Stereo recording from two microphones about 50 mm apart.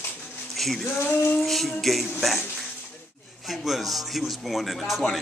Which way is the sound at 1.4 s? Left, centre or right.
Centre.